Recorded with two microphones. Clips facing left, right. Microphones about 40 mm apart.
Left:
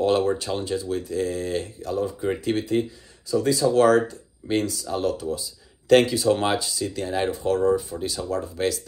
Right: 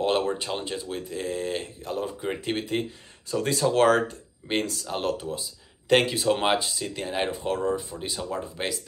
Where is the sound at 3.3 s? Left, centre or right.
Right.